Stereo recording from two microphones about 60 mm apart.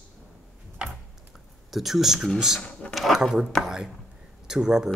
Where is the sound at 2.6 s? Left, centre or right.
Centre.